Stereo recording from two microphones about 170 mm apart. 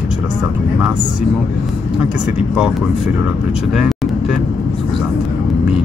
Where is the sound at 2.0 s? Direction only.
5° right (ahead or behind).